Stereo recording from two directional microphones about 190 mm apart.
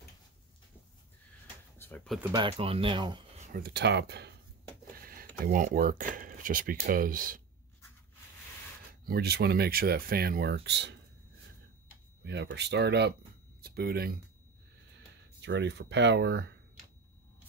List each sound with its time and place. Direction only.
1.8 s a sound: 10° left (ahead or behind)
2.3 s speech: 30° right (ahead or behind)
3.5 s speech: 60° right (ahead or behind)
4.9 s a sound: 50° right (ahead or behind)
5.4 s speech: 45° right (ahead or behind)
9.0 s speech: 55° right (ahead or behind)
12.2 s speech: 65° right (ahead or behind)
13.6 s speech: 55° right (ahead or behind)
15.0 s speech: 65° right (ahead or behind)